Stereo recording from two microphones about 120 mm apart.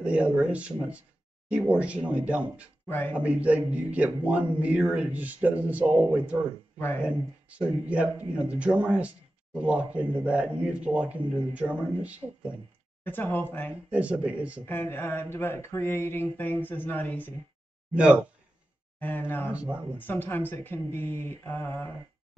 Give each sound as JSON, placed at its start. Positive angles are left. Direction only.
{"t": 0.0, "sound": "a man's voice", "side_deg": -10}
{"t": 2.9, "sound": "mantra", "side_deg": 15}
{"t": 3.2, "sound": "a man's voice", "side_deg": -10}
{"t": 13.0, "sound": "mantra", "side_deg": 15}
{"t": 13.8, "sound": "a man's voice", "side_deg": -10}
{"t": 14.7, "sound": "mantra", "side_deg": 20}
{"t": 17.9, "sound": "a man's voice", "side_deg": -10}
{"t": 18.9, "sound": "mantra", "side_deg": 15}
{"t": 19.5, "sound": "a man's voice", "side_deg": -10}
{"t": 20.0, "sound": "mantra", "side_deg": 15}